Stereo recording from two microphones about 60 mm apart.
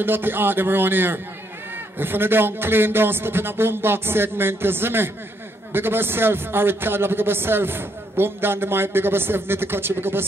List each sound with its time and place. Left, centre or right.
0.0 s a man's voice: right